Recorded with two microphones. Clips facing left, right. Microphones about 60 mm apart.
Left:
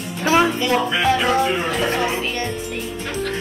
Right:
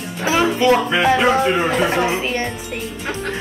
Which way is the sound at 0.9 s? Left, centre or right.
Right.